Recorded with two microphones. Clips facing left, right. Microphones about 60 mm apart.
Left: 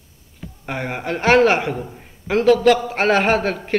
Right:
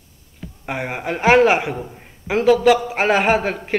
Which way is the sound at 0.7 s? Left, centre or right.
Centre.